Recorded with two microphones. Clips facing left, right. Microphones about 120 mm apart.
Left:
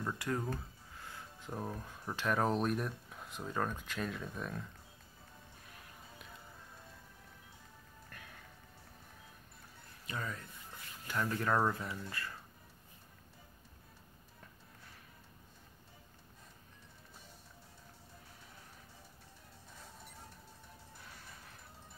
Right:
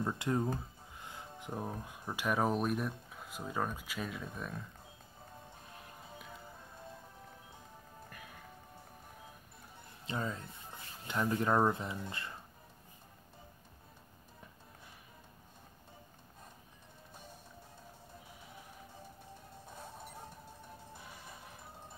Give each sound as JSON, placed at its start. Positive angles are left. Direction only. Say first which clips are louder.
{"t": 0.0, "sound": "speech", "louder": "right 4 dB", "side_deg": -20}
{"t": 10.0, "sound": "speech", "louder": "right 4 dB", "side_deg": -25}